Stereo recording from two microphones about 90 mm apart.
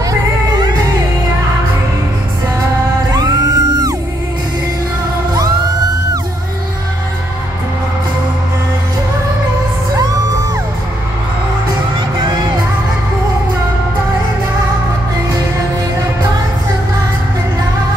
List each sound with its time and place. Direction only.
0.5 s music: 50° right (ahead or behind)
3.1 s music: 45° right (ahead or behind)